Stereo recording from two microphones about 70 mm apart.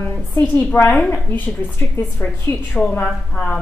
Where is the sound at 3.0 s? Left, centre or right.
Centre.